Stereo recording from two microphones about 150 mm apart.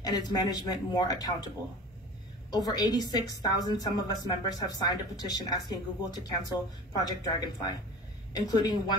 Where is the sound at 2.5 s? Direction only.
25° left (ahead or behind).